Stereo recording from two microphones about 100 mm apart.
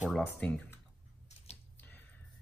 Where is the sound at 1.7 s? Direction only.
20° left (ahead or behind).